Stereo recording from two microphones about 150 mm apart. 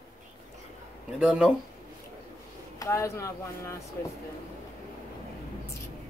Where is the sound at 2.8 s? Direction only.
20° left (ahead or behind).